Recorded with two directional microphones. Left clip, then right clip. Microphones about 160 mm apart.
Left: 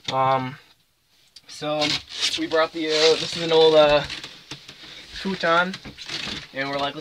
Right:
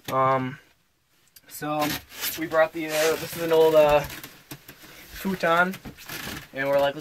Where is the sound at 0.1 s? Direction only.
10° right (ahead or behind).